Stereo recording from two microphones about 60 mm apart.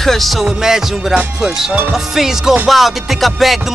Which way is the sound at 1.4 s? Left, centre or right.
Centre.